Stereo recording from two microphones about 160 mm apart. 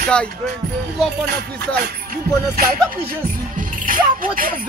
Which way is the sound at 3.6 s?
60° right (ahead or behind).